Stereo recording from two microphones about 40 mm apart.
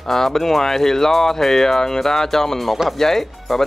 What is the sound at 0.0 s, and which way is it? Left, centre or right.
Speech, centre.